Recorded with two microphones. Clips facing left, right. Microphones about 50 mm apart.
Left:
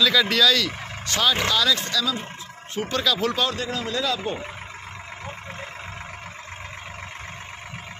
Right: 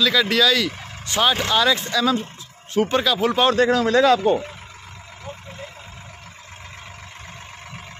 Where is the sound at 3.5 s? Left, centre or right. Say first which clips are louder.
Right 11 dB; right.